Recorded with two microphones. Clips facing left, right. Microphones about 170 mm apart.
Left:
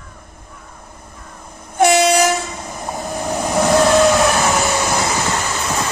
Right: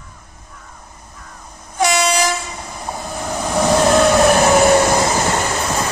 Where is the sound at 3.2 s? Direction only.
10° left (ahead or behind).